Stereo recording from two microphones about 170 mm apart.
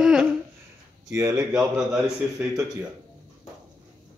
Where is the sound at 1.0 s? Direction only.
20° right (ahead or behind).